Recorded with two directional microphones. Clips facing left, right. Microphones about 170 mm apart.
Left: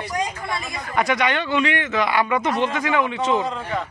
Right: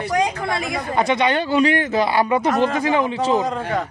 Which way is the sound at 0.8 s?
25° right (ahead or behind).